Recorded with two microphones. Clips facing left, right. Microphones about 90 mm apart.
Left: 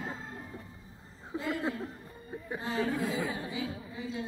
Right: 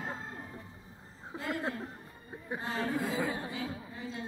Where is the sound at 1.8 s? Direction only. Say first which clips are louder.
Left 3 dB; 20° right (ahead or behind).